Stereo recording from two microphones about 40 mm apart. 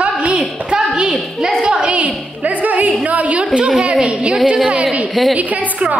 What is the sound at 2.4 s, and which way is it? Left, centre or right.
A woman's voice, right.